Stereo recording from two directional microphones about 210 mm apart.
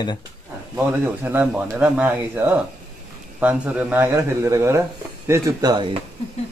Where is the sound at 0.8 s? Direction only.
10° right (ahead or behind).